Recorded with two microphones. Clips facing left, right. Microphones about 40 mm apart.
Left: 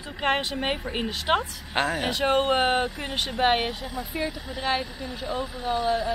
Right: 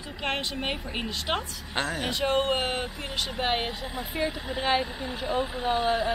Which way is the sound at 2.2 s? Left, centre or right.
Centre.